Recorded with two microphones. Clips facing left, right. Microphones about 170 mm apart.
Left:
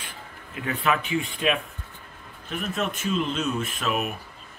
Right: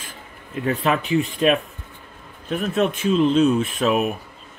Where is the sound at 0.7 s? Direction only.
35° right (ahead or behind).